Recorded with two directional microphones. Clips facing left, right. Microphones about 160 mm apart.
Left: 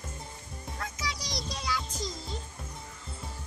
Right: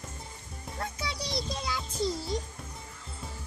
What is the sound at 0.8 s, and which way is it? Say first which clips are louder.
Music: right 2 dB; 30° right (ahead or behind).